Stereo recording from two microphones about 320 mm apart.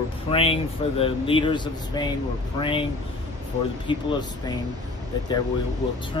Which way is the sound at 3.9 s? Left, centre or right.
Centre.